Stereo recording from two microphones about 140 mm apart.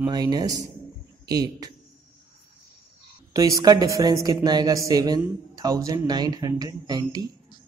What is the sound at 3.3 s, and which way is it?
Speech, 25° right (ahead or behind).